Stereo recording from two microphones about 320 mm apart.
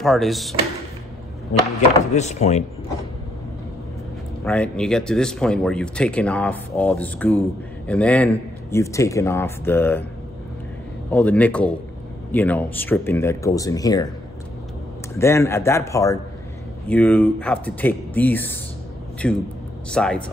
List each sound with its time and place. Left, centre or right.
0.0 s speech: centre
2.1 s speech: left
4.5 s speech: centre
11.1 s speech: centre
15.1 s speech: centre